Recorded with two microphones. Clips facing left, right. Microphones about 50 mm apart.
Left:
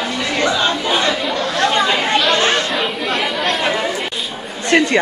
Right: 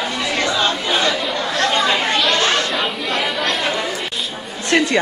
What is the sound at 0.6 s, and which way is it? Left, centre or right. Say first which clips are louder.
Chatter: left 1 dB; centre.